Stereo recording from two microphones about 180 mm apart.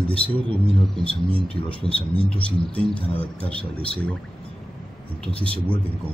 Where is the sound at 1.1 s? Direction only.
30° right (ahead or behind).